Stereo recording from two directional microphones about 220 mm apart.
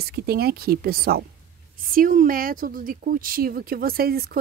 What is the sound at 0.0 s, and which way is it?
Speech, 45° right (ahead or behind).